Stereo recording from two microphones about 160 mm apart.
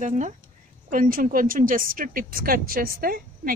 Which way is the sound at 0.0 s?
50° right (ahead or behind).